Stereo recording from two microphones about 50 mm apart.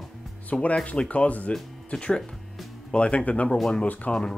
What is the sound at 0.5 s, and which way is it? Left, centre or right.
Speech, left.